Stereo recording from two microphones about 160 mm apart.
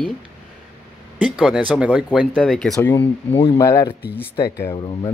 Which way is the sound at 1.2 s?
5° right (ahead or behind).